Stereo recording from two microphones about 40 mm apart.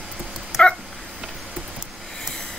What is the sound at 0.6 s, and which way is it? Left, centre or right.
Dog, left.